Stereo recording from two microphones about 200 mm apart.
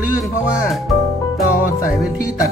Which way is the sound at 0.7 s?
Centre (ahead or behind).